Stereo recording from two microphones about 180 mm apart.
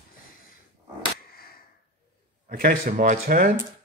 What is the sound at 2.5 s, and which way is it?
Speech, 45° right (ahead or behind).